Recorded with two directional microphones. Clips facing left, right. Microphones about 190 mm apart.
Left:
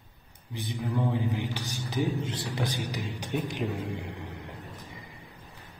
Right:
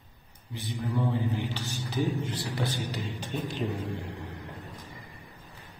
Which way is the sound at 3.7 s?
15° left (ahead or behind).